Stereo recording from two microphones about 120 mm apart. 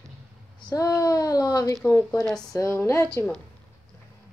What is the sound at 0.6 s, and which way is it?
Speech, 30° left (ahead or behind).